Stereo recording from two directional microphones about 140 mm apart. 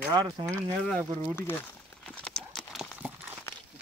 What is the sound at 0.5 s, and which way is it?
Speech, 10° left (ahead or behind).